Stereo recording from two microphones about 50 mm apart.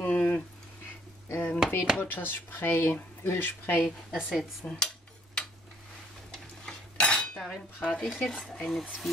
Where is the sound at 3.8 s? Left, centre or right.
Centre.